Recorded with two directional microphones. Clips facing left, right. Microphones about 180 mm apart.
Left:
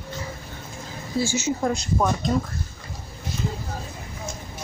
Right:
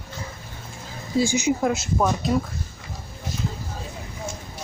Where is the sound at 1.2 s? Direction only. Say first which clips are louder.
Right 3 dB; 15° right (ahead or behind).